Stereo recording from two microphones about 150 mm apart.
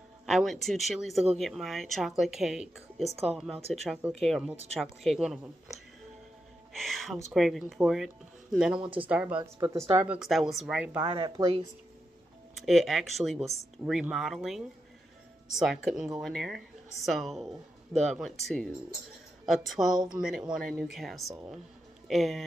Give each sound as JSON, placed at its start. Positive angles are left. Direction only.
{"t": 0.3, "sound": "speech", "side_deg": 0}
{"t": 8.7, "sound": "speech", "side_deg": -35}
{"t": 9.1, "sound": "speech", "side_deg": -10}
{"t": 9.4, "sound": "speech", "side_deg": -20}
{"t": 9.9, "sound": "speech", "side_deg": -5}
{"t": 11.1, "sound": "speech", "side_deg": -35}
{"t": 12.5, "sound": "speech", "side_deg": 0}
{"t": 15.6, "sound": "speech", "side_deg": 0}